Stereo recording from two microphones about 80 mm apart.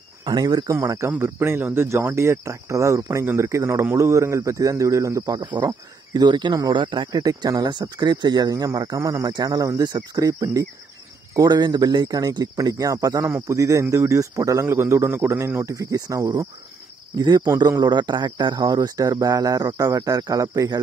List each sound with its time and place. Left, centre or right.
0.2 s speech: right
0.7 s speech: right
5.2 s speech: right
6.7 s speech: right
7.2 s speech: right
7.7 s speech: right
9.3 s speech: right
11.3 s speech: right
17.1 s speech: right